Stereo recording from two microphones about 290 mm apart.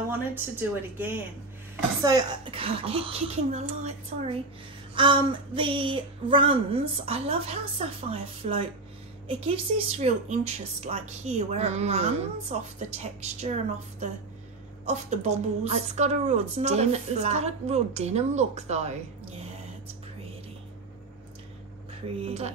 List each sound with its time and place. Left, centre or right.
0.1 s speech: centre; by 13.5 s right
14.9 s speech: right
22.2 s speech: right